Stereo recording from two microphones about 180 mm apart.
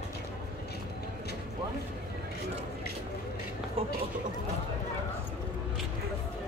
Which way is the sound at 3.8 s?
30° right (ahead or behind).